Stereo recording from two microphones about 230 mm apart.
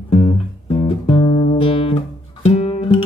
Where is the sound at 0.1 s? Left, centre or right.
Left.